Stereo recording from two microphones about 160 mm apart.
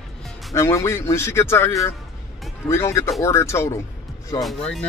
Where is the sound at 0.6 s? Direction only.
20° left (ahead or behind).